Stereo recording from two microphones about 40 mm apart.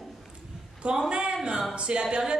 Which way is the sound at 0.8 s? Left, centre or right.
Right.